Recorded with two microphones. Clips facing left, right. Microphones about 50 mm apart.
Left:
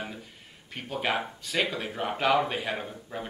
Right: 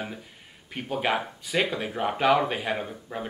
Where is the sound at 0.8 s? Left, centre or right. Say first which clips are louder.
Right 3 dB; centre.